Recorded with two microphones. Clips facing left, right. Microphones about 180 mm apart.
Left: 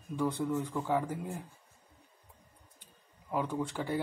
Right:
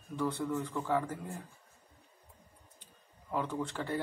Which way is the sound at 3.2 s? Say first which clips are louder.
Left 2 dB; 15° left (ahead or behind).